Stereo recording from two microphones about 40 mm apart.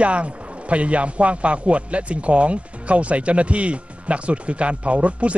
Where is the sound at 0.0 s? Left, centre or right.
Right.